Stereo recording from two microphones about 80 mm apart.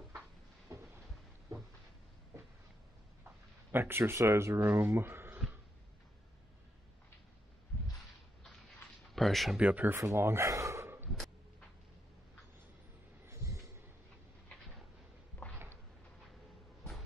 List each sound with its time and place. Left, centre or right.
0.7 s a sound: right
3.7 s speech: right
9.1 s a sound: centre
9.6 s speech: centre
9.8 s speech: right
13.2 s vehicle: right